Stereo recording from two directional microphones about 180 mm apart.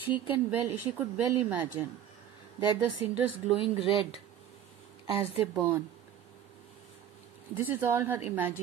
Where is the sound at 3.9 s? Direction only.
30° left (ahead or behind).